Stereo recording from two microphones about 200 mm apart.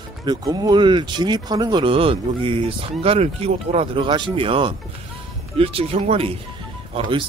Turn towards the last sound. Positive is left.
turn(degrees=-25)  # may be behind; listen again after turning